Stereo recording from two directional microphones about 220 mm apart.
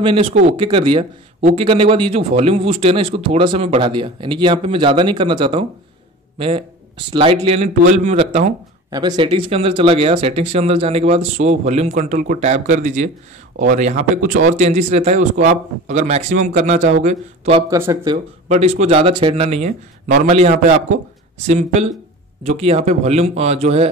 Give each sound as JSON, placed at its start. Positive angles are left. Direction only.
{"t": 0.0, "sound": "speech", "side_deg": -25}
{"t": 17.6, "sound": "speech", "side_deg": -15}
{"t": 18.1, "sound": "speech", "side_deg": -30}